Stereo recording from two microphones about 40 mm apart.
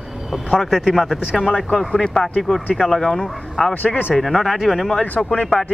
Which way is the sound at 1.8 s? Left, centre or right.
Centre.